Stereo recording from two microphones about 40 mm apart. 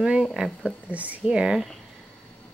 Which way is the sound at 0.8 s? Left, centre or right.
Right.